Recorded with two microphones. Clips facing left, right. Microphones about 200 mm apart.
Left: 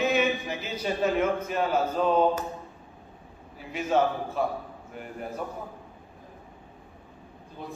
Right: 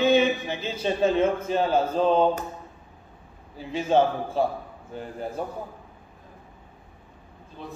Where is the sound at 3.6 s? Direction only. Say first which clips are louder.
Right 3 dB; 30° right (ahead or behind).